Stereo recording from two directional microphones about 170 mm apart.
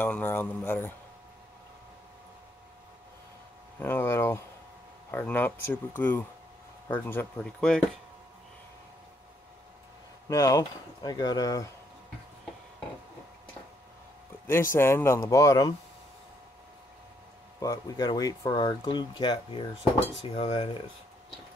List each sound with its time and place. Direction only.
0.0 s speech: 10° left (ahead or behind)
3.8 s speech: 10° left (ahead or behind)
10.2 s speech: 20° left (ahead or behind)
14.8 s speech: 15° left (ahead or behind)
17.6 s speech: 20° left (ahead or behind)